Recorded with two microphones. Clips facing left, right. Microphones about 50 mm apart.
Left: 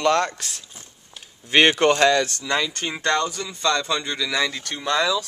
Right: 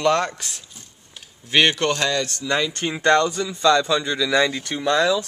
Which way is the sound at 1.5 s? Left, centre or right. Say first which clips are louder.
Left 2 dB; left.